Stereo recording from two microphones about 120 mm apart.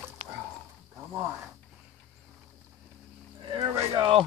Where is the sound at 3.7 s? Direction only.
50° right (ahead or behind).